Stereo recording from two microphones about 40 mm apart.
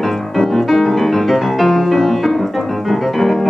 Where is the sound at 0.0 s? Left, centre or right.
Centre.